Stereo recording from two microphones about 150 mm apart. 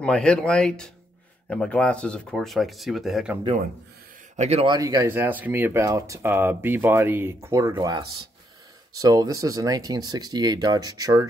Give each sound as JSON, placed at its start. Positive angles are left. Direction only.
{"t": 0.0, "sound": "speech", "side_deg": 5}
{"t": 4.4, "sound": "a man's voice", "side_deg": -45}
{"t": 4.6, "sound": "speech", "side_deg": -25}